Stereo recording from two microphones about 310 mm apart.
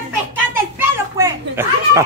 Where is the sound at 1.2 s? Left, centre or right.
Centre.